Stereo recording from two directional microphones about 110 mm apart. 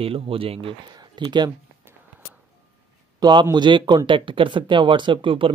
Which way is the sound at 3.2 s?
40° right (ahead or behind).